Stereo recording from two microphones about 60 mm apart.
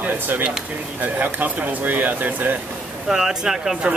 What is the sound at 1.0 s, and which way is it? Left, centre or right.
Speech, right.